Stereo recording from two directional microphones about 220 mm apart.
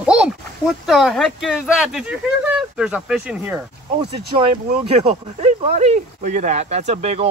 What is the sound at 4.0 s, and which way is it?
Speech, 25° right (ahead or behind).